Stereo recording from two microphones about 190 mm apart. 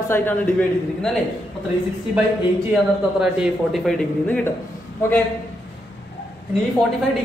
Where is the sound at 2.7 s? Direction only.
Centre (ahead or behind).